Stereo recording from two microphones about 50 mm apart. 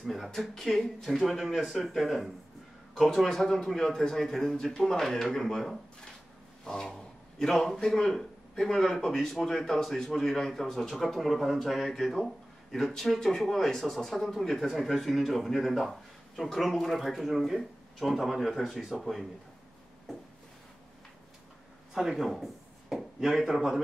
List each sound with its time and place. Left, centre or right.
0.0 s a sound: centre
0.3 s a man's voice: centre
21.9 s speech: centre